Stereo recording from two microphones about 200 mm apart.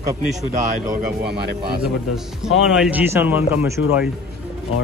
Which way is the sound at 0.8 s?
50° right (ahead or behind).